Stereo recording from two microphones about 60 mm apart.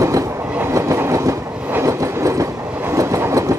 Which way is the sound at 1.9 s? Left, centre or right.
Right.